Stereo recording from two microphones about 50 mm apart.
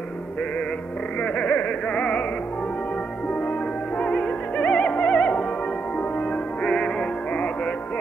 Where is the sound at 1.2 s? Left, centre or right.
Left.